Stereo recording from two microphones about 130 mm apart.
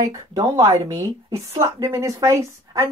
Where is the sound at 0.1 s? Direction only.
25° right (ahead or behind).